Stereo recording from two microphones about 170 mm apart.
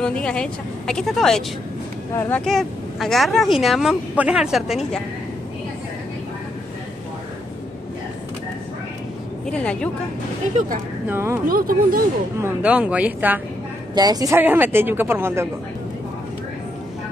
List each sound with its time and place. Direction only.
0.0 s a woman's voice: 5° left (ahead or behind)
2.4 s speech: centre (ahead or behind)
9.5 s a woman's voice: 5° left (ahead or behind)
11.1 s a woman's voice: 15° right (ahead or behind)
11.4 s speech: 55° right (ahead or behind)
12.4 s a woman's voice: 10° right (ahead or behind)
13.9 s a woman's voice: 20° right (ahead or behind)